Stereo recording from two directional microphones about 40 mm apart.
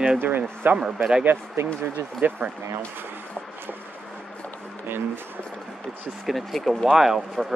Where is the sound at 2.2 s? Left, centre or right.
Right.